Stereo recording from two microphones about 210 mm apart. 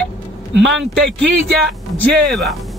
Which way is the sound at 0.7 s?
Centre (ahead or behind).